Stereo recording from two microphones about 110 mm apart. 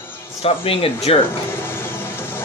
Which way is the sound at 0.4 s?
60° left (ahead or behind).